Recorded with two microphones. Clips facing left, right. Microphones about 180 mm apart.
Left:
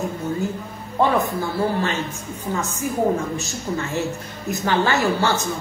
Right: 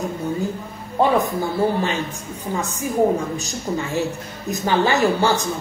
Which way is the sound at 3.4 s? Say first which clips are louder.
Right 1 dB; 15° right (ahead or behind).